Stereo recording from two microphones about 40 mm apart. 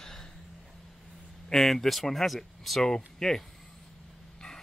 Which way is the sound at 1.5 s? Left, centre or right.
Centre.